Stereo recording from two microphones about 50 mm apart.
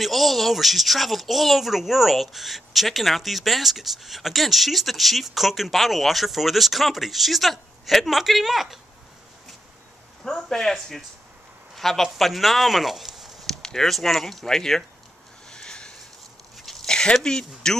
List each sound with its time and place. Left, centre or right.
0.0 s speech: centre
10.2 s speech: centre
13.5 s speech: centre
15.5 s a sound: centre
16.5 s a sound: centre
16.8 s speech: centre